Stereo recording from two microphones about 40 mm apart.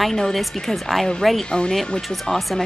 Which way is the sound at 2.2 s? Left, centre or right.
Centre.